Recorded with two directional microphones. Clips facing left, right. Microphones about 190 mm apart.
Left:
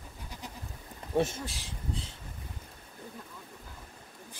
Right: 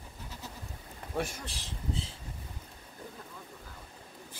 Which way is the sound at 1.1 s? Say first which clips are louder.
Left 6 dB; 25° left (ahead or behind).